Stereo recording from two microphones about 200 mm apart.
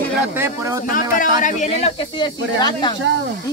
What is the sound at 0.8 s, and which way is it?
Speech, 45° left (ahead or behind).